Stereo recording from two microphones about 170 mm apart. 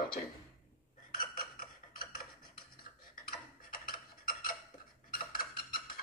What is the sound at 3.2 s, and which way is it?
Tick-tock, 60° left (ahead or behind).